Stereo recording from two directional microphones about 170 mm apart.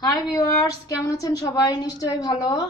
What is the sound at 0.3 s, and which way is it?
A woman's voice, 20° left (ahead or behind).